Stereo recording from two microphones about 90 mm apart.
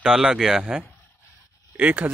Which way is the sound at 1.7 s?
20° right (ahead or behind).